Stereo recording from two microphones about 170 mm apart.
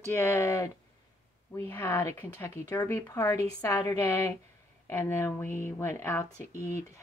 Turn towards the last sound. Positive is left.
turn(degrees=15)  # may be behind; listen again after turning